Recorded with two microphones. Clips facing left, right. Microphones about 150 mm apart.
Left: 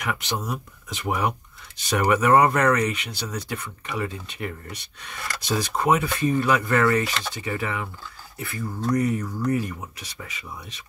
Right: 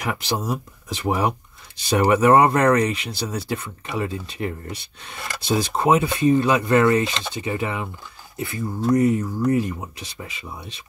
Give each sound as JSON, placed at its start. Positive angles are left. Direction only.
{"t": 0.0, "sound": "speech", "side_deg": -35}